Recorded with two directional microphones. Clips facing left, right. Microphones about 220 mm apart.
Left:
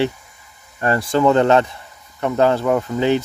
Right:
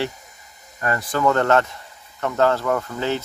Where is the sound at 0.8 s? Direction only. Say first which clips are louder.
Left 5 dB; 30° left (ahead or behind).